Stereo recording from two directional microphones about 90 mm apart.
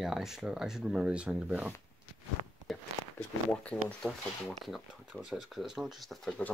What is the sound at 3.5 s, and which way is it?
Speech, 15° left (ahead or behind).